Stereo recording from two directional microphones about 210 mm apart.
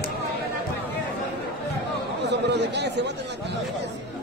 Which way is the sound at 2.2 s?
55° right (ahead or behind).